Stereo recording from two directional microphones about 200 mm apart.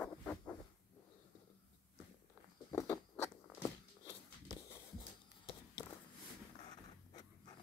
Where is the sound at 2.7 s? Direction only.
15° left (ahead or behind).